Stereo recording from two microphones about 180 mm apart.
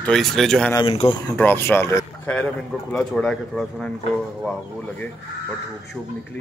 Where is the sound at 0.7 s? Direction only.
30° left (ahead or behind).